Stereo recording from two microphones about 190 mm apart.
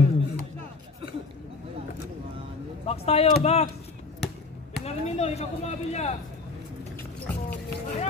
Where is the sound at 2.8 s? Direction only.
30° left (ahead or behind).